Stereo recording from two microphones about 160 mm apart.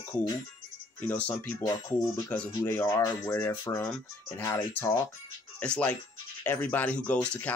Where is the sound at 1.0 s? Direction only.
10° left (ahead or behind).